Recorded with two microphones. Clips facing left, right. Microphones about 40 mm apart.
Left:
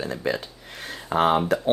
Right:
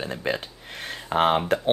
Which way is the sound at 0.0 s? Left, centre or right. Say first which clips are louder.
Left 1 dB; right.